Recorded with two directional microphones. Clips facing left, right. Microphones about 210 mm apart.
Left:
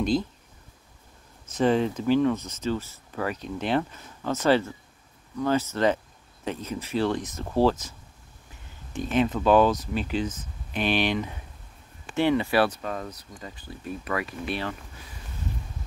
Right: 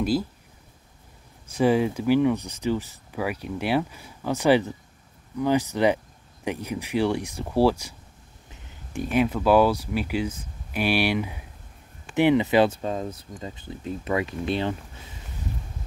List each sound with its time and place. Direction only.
0.0 s speech: 5° right (ahead or behind)
1.5 s speech: 10° right (ahead or behind)